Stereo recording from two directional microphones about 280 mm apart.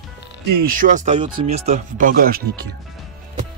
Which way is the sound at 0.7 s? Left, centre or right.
Right.